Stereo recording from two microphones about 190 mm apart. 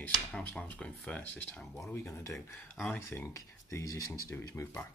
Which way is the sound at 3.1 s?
15° left (ahead or behind).